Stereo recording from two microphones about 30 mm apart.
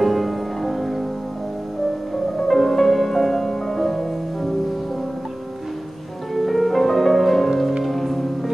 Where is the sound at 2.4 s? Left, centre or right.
Centre.